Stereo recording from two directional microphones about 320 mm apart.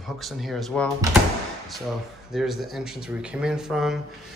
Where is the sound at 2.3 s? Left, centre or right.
Centre.